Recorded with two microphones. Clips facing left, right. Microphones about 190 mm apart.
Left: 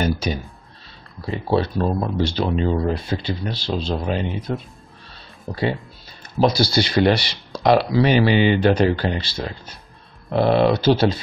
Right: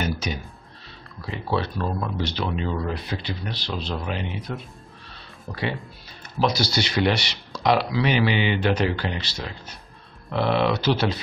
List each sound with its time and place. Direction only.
0.0 s speech: 30° left (ahead or behind)
5.1 s a sound: 35° left (ahead or behind)
6.4 s speech: 30° left (ahead or behind)
10.3 s speech: 40° left (ahead or behind)
10.8 s speech: 30° left (ahead or behind)